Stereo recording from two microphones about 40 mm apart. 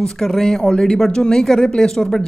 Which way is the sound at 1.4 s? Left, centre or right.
Centre.